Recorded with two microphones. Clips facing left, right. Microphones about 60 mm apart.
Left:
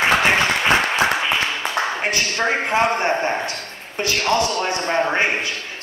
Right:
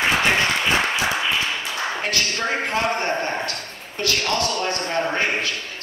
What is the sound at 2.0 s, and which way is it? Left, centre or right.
Speech, left.